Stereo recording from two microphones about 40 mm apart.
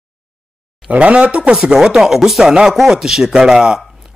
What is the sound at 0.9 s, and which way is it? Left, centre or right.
Speech, right.